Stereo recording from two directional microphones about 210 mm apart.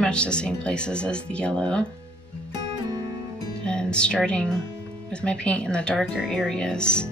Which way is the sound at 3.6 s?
5° left (ahead or behind).